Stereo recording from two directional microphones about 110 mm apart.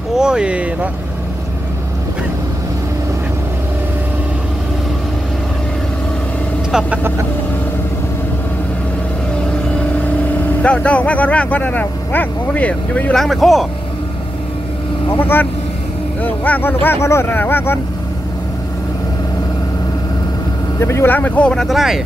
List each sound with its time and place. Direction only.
0.1 s speech: 5° right (ahead or behind)
6.7 s speech: 5° right (ahead or behind)
10.6 s speech: 10° left (ahead or behind)
15.1 s speech: 20° left (ahead or behind)
20.8 s speech: 25° left (ahead or behind); by 22.0 s 5° right (ahead or behind)